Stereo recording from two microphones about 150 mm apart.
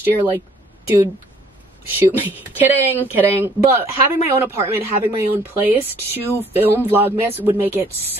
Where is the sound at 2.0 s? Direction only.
15° right (ahead or behind).